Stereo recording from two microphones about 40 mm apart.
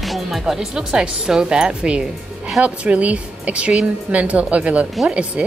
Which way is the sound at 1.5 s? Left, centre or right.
Right.